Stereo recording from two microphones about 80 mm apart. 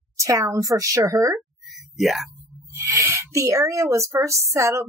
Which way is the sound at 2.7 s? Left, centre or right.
Right.